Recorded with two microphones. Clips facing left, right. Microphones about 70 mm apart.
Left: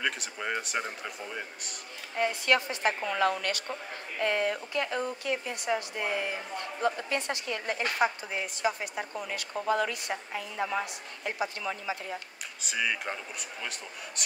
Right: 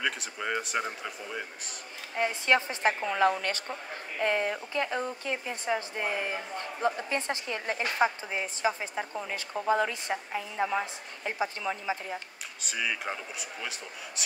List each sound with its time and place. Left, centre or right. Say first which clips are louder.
0.0 s speech: even; centre
2.1 s speech: right 1 dB; right
12.6 s speech: left 1 dB; centre